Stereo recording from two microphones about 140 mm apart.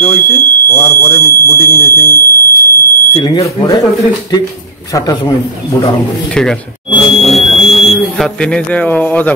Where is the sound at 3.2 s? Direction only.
25° left (ahead or behind).